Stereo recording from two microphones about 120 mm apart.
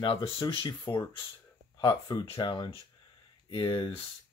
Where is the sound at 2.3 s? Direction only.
40° left (ahead or behind).